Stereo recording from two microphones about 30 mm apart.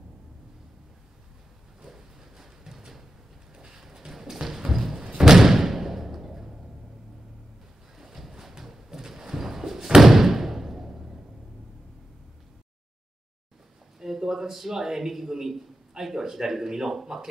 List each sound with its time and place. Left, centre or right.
1.9 s a sound: centre
4.1 s music: centre
4.9 s slam: right
5.2 s thump: centre
8.0 s a sound: centre
9.8 s thump: right
10.0 s thump: centre
13.9 s a man's voice: centre